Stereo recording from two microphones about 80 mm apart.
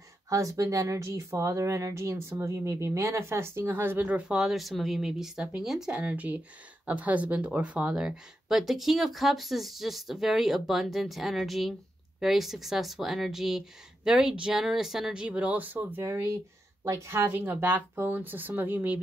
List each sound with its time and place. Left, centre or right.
0.3 s speech: right; by 5.9 s centre
5.9 s speech: centre
16.0 s speech: right
17.1 s speech: right